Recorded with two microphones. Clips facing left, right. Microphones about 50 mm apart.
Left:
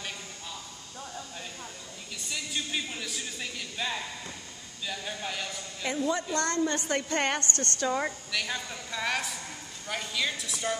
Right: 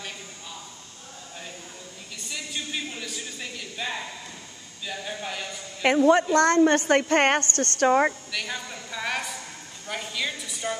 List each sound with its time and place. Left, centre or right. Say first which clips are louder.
2.2 s a man's voice: right 1 dB; centre
5.8 s a woman's voice: right 11 dB; right
8.3 s a woman's voice: right 1 dB; centre